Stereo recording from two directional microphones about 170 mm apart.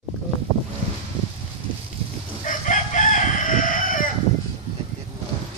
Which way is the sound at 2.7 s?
50° left (ahead or behind).